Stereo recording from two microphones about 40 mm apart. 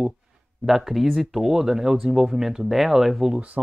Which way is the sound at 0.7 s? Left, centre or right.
Centre.